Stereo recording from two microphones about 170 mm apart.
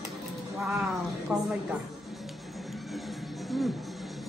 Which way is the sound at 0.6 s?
Centre (ahead or behind).